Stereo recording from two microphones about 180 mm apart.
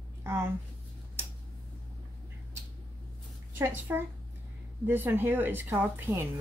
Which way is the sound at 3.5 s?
10° right (ahead or behind).